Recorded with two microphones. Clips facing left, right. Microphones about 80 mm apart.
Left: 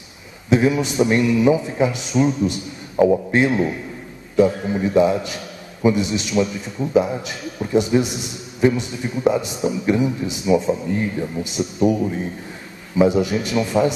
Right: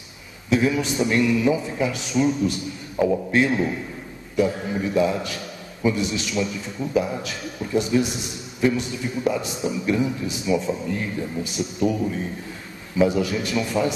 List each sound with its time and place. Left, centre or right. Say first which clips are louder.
0.5 s a man's voice: left 3 dB; left